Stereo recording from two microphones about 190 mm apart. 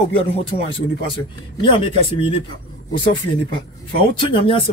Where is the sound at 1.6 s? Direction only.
25° left (ahead or behind).